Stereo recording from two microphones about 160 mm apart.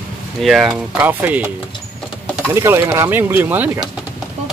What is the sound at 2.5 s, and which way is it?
Speech, 15° right (ahead or behind).